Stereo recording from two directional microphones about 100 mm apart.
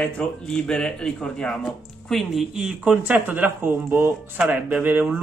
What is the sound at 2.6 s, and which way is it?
Speech, 10° right (ahead or behind).